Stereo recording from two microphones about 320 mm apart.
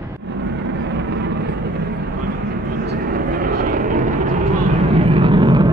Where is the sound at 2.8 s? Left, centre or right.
Right.